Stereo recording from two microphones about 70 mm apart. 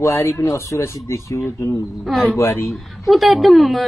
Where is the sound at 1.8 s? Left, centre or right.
Centre.